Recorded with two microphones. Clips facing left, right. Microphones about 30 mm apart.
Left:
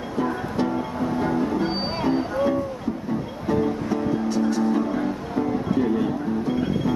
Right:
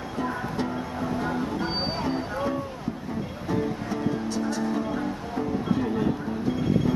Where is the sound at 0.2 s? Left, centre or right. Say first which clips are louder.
Left 5 dB; centre.